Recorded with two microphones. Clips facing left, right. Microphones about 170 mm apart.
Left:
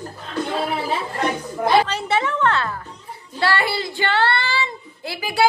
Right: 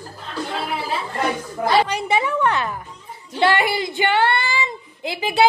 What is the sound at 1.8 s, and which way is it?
A woman's voice, 15° right (ahead or behind).